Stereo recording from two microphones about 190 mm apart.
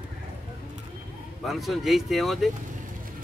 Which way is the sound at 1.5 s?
Centre (ahead or behind).